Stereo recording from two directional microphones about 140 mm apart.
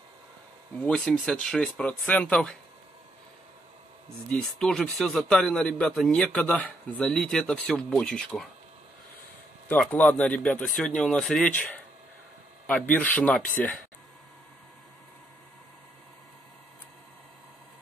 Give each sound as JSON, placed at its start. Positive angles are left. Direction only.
{"t": 0.8, "sound": "speech", "side_deg": 5}
{"t": 4.3, "sound": "a man's voice", "side_deg": 5}
{"t": 9.7, "sound": "a man's voice", "side_deg": 10}
{"t": 12.6, "sound": "speech", "side_deg": 10}